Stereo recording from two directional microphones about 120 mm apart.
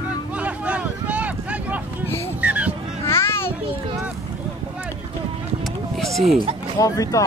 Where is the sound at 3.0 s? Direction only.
20° left (ahead or behind).